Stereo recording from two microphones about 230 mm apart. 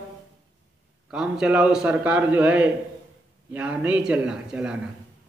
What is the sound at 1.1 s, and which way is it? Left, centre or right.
A man's voice, centre.